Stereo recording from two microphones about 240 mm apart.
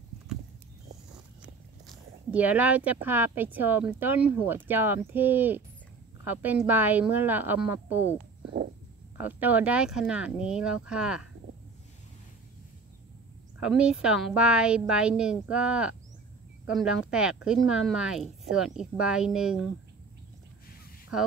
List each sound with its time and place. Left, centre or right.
1.4 s speech: centre
9.2 s speech: centre
13.6 s speech: centre